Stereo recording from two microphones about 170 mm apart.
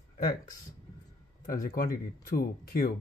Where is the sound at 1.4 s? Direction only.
55° left (ahead or behind).